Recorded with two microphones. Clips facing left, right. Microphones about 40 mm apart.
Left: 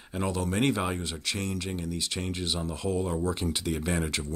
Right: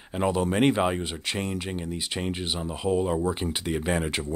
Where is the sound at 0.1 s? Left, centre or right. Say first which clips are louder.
Right 5 dB; right.